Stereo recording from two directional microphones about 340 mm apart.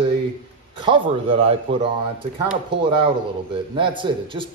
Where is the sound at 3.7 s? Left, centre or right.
Centre.